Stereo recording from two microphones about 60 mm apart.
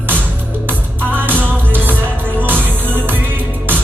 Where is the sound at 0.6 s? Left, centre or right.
Right.